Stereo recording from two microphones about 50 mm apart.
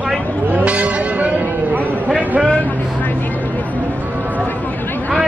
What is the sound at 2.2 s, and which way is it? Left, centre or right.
Speech, right.